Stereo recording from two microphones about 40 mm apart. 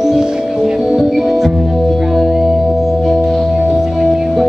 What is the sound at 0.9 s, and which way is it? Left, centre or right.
Music, centre.